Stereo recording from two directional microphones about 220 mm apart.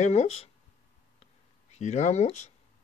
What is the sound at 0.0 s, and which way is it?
Speech, 30° left (ahead or behind).